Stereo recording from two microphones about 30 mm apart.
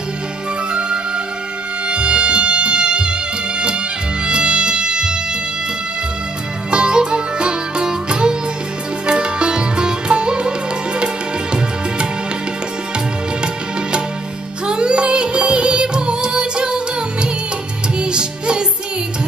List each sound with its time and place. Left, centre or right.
0.7 s music: right
6.7 s music: right
14.7 s music: right